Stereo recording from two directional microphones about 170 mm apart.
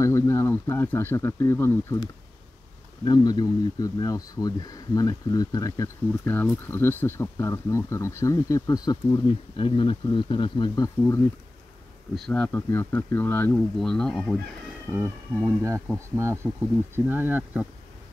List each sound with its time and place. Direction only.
0.0 s speech: 15° left (ahead or behind)
3.1 s speech: 25° left (ahead or behind)
12.2 s speech: 5° left (ahead or behind)
14.9 s speech: 10° right (ahead or behind)
16.9 s speech: 10° right (ahead or behind)